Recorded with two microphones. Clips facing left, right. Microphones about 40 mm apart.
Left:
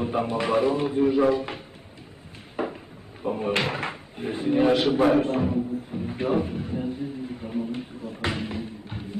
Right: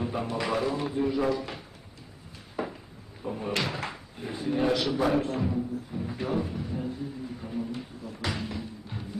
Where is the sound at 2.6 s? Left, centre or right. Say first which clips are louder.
Left 4 dB; left.